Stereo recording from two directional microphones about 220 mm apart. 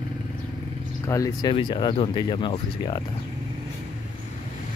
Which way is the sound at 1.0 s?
15° left (ahead or behind).